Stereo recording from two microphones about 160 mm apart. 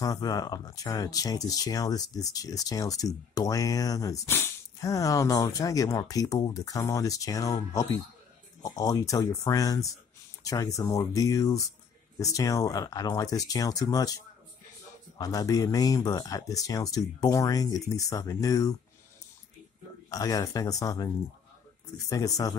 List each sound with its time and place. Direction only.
0.0 s speech: 25° left (ahead or behind)
20.1 s speech: 20° left (ahead or behind)
22.1 s speech: 20° left (ahead or behind)